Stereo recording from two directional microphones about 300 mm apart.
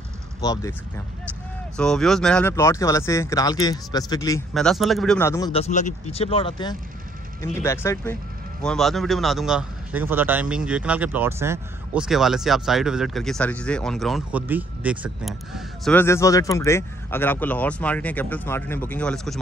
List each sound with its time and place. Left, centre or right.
0.4 s speech: centre
4.6 s a man's voice: centre